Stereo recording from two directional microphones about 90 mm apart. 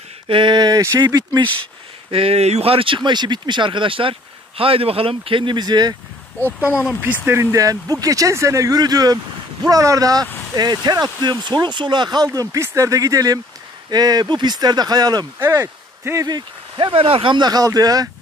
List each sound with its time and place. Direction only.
0.3 s speech: 65° right (ahead or behind)
2.0 s speech: 90° right; by 5.9 s 50° right (ahead or behind)
7.5 s speech: 40° right (ahead or behind); by 12.3 s 55° right (ahead or behind)
12.3 s speech: 35° right (ahead or behind); by 15.2 s 50° right (ahead or behind)
15.3 s speech: 30° right (ahead or behind)
16.3 s speech: 55° right (ahead or behind)
17.5 s speech: 45° right (ahead or behind)